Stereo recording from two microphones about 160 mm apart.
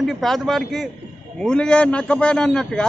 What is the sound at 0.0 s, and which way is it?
A man's voice, centre (ahead or behind).